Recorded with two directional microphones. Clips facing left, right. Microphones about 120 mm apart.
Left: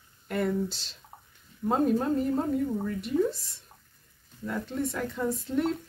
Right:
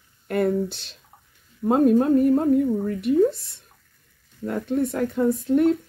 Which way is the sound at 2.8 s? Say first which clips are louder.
Right 8 dB; 60° right (ahead or behind).